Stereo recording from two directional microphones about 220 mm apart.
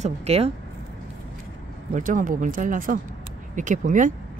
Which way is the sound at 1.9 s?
35° right (ahead or behind).